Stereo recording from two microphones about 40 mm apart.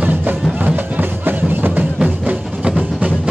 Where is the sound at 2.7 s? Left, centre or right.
Right.